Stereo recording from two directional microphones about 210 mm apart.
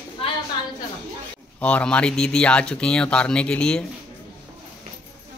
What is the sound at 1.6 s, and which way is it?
Speech, 5° left (ahead or behind).